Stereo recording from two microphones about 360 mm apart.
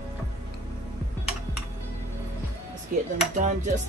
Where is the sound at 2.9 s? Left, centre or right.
Right.